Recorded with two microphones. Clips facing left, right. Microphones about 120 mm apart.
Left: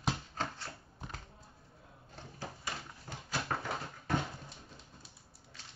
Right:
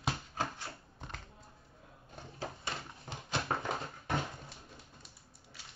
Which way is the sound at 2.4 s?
20° right (ahead or behind).